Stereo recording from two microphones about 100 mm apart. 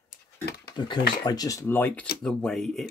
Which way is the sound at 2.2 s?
5° left (ahead or behind).